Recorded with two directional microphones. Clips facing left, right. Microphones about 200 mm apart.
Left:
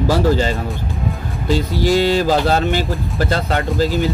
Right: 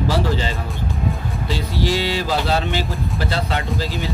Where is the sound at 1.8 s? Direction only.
45° left (ahead or behind).